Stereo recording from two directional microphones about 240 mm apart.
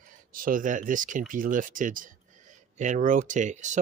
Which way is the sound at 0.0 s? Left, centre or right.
Right.